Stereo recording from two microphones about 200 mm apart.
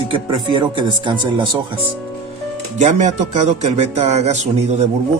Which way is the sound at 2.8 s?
35° right (ahead or behind).